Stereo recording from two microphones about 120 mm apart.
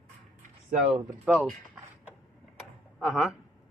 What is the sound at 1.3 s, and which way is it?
Speech, 10° right (ahead or behind).